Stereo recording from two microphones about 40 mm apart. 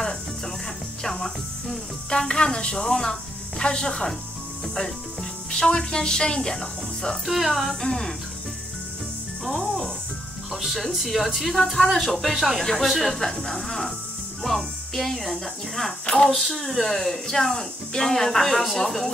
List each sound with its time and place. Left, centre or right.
1.0 s music: centre
2.0 s speech: centre
5.5 s a woman's voice: centre
7.2 s speech: centre
7.8 s a woman's voice: centre
9.4 s speech: centre